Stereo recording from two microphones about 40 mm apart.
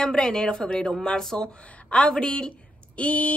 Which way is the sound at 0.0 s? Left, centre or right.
Centre.